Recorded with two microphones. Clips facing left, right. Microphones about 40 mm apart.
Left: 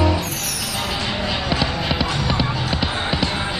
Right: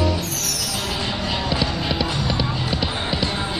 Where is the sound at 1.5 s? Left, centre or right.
Centre.